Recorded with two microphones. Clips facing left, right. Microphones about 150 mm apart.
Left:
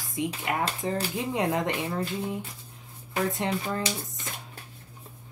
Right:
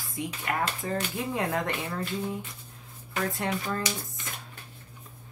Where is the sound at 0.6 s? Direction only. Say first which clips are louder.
Left 1 dB; 35° left (ahead or behind).